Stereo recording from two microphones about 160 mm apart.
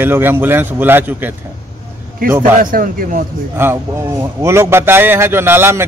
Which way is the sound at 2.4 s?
55° right (ahead or behind).